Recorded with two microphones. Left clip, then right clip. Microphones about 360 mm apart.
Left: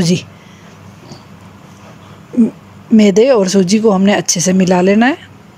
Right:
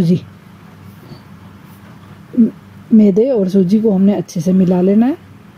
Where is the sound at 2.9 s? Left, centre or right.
Left.